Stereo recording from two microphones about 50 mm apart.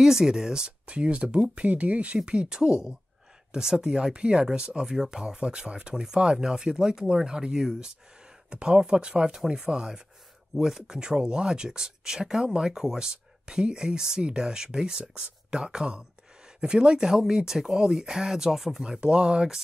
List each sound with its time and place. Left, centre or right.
0.0 s speech: centre
4.9 s speech: centre
5.2 s speech: centre
18.9 s speech: right